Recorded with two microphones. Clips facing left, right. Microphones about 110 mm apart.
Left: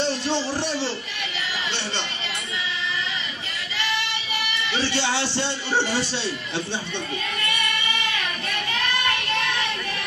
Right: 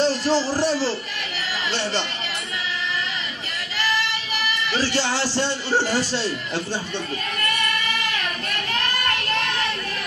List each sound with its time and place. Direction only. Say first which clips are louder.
0.0 s speech: right 4 dB; 40° right (ahead or behind)
4.6 s a man's voice: right 1 dB; 40° right (ahead or behind)
7.4 s music: right 4 dB; 45° right (ahead or behind)